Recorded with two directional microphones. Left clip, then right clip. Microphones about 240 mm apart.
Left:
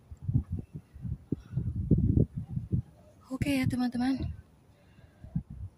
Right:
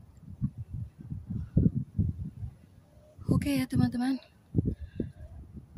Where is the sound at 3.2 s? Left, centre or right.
Centre.